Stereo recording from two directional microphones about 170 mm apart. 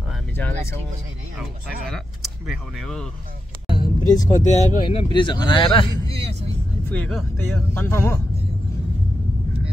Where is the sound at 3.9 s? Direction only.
20° left (ahead or behind).